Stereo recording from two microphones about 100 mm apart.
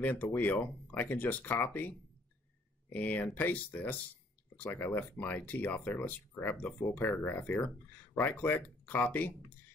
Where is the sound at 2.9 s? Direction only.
15° left (ahead or behind).